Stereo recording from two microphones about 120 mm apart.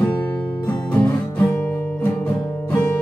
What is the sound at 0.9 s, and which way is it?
Music, 10° left (ahead or behind).